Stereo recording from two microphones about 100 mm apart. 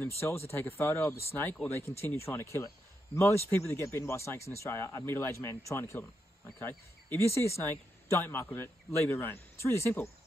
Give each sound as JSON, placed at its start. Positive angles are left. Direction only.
{"t": 0.5, "sound": "speech", "side_deg": 25}